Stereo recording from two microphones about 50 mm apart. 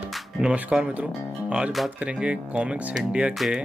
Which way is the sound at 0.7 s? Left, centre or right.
Right.